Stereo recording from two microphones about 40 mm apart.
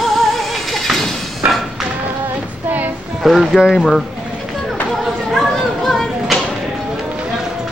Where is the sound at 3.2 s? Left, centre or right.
Centre.